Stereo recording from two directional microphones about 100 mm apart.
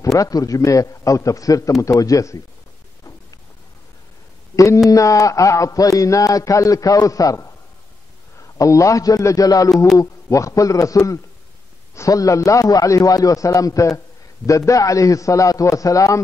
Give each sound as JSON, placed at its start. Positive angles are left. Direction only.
{"t": 0.0, "sound": "a man's voice", "side_deg": 35}
{"t": 4.9, "sound": "a man's voice", "side_deg": 35}